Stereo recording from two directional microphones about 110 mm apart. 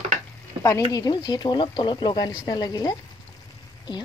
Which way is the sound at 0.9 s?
40° left (ahead or behind).